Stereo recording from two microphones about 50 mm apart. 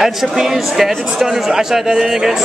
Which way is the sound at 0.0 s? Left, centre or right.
Centre.